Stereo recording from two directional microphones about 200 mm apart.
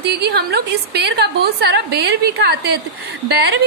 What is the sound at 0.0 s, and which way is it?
A woman's voice, 55° right (ahead or behind).